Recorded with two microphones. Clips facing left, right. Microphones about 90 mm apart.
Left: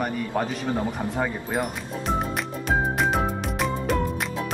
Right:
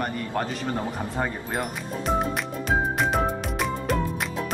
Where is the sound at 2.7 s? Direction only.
Centre (ahead or behind).